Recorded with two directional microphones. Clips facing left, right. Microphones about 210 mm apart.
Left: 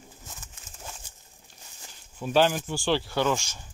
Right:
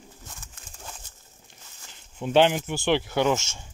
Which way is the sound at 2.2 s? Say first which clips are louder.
Right 3 dB; 20° right (ahead or behind).